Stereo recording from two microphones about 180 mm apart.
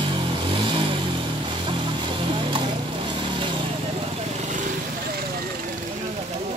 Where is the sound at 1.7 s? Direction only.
25° right (ahead or behind).